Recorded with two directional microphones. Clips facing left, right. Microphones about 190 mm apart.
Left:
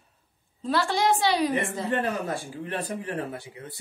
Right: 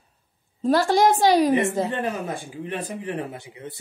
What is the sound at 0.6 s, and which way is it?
Speech, 45° right (ahead or behind).